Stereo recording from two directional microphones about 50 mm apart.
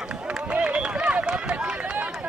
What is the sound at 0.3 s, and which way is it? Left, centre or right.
Run, right.